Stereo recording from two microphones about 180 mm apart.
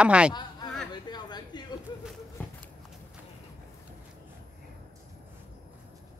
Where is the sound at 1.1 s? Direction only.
25° left (ahead or behind).